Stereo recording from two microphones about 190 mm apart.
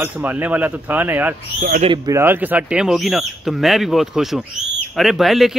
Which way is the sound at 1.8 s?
20° right (ahead or behind).